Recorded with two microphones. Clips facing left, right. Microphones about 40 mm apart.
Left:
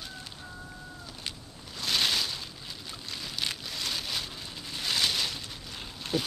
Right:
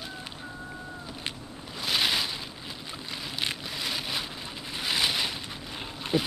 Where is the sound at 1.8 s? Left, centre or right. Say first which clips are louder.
Right 1 dB; centre.